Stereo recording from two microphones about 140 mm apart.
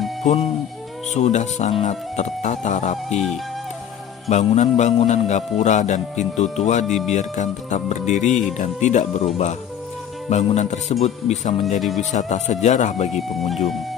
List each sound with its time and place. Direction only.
0.2 s music: 50° left (ahead or behind)
1.1 s a man's voice: 55° left (ahead or behind)
4.3 s a man's voice: 55° left (ahead or behind)